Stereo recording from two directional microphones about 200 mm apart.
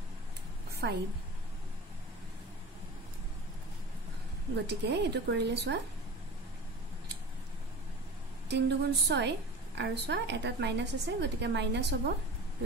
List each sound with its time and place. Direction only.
0.8 s a woman's voice: 55° right (ahead or behind)
4.6 s a woman's voice: 55° right (ahead or behind)
8.5 s a woman's voice: 60° right (ahead or behind)